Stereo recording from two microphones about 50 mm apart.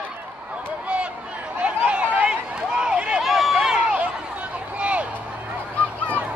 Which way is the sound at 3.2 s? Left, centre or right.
Centre.